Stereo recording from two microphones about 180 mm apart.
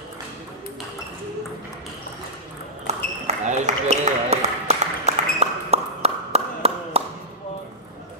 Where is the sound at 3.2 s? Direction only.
40° right (ahead or behind).